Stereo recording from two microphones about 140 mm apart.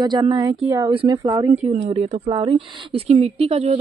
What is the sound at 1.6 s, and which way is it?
Speech, 50° right (ahead or behind).